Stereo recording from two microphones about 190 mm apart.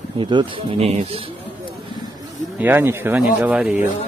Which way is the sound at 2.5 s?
10° right (ahead or behind).